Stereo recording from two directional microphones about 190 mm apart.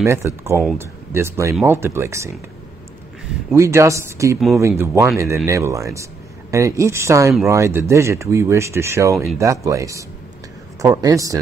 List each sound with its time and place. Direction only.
0.0 s speech: 15° right (ahead or behind)
3.5 s speech: 15° right (ahead or behind)
9.1 s speech: centre (ahead or behind)
9.4 s a man's voice: 15° right (ahead or behind)